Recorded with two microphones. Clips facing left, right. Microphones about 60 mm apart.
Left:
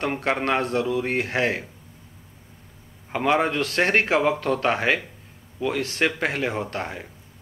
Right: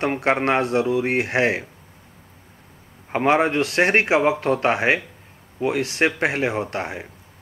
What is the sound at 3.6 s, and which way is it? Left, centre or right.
Speech, centre.